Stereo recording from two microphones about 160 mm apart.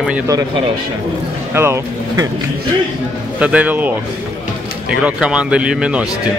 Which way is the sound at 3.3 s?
10° right (ahead or behind).